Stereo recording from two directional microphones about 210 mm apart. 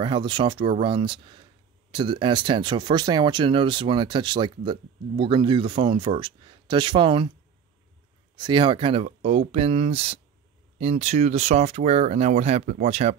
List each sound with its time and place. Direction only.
0.0 s speech: 20° right (ahead or behind)
8.4 s speech: 20° right (ahead or behind)